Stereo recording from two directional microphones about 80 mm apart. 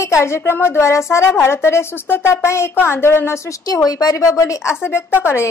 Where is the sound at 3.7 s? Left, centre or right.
Left.